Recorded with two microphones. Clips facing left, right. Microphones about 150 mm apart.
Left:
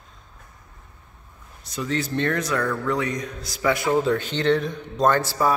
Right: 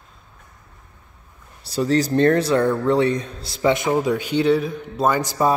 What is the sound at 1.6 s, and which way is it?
Speech, 35° right (ahead or behind).